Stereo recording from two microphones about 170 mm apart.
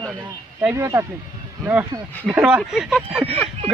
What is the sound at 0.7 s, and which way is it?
Speech, 20° right (ahead or behind).